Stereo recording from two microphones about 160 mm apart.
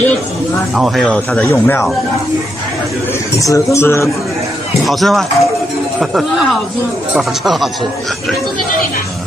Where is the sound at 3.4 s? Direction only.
20° left (ahead or behind).